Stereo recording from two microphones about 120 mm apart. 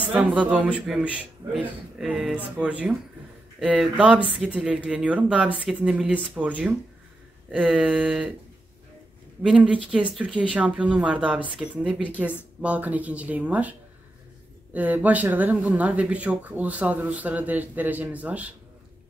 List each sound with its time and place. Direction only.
0.0 s speech: 10° right (ahead or behind)
9.4 s speech: 10° right (ahead or behind)